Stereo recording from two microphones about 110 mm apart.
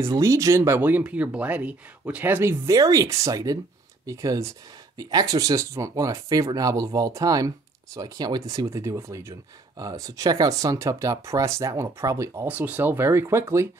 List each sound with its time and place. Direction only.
0.0 s speech: 25° right (ahead or behind)
12.4 s speech: 15° right (ahead or behind)